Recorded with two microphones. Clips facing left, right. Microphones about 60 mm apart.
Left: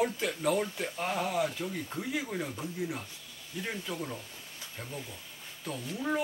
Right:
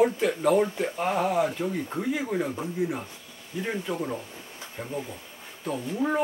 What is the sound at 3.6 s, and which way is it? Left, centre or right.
Speech, centre.